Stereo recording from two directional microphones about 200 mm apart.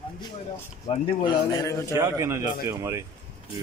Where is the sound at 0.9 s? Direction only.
20° left (ahead or behind).